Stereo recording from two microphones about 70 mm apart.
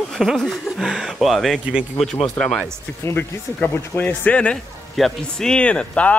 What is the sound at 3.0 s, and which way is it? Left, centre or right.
Speech, left.